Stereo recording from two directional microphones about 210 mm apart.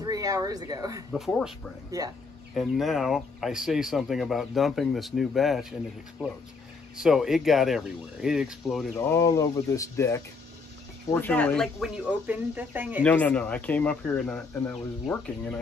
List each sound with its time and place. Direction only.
0.0 s speech: 15° right (ahead or behind)
1.1 s speech: centre (ahead or behind)
1.9 s speech: 15° right (ahead or behind)
2.5 s speech: centre (ahead or behind)
7.0 s speech: centre (ahead or behind)
8.9 s speech: 15° left (ahead or behind); by 13.0 s 10° right (ahead or behind)
13.0 s speech: 5° left (ahead or behind)